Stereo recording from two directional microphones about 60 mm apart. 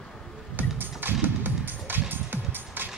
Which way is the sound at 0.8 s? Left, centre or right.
Right.